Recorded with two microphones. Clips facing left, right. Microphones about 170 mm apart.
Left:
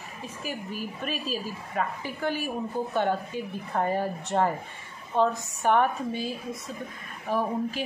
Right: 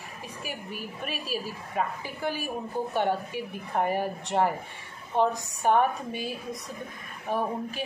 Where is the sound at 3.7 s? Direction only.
15° right (ahead or behind).